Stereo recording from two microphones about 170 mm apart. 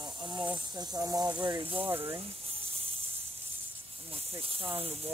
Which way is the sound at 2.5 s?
35° right (ahead or behind).